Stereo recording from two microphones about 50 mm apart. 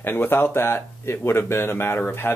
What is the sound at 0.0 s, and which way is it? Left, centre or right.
Speech, left.